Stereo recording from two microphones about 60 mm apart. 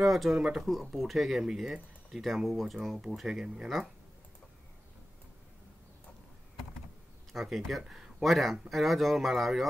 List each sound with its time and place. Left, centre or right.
0.0 s speech: centre
7.3 s speech: centre